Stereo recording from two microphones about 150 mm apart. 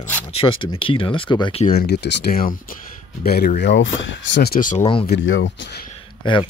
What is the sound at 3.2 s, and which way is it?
Speech, 90° left.